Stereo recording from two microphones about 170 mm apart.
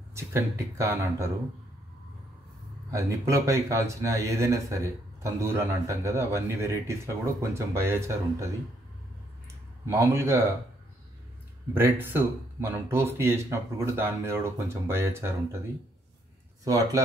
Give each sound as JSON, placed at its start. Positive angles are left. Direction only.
{"t": 0.1, "sound": "speech", "side_deg": -15}
{"t": 2.9, "sound": "speech", "side_deg": -15}
{"t": 9.8, "sound": "speech", "side_deg": -15}
{"t": 11.7, "sound": "speech", "side_deg": -10}
{"t": 16.6, "sound": "speech", "side_deg": -20}